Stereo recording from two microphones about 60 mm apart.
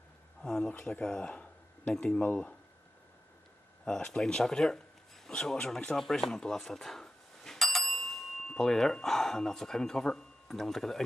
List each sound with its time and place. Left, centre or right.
0.4 s speech: centre
3.8 s speech: centre